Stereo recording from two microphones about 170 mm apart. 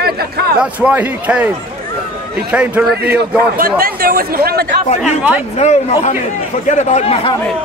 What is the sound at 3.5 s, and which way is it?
Speech, 60° right (ahead or behind).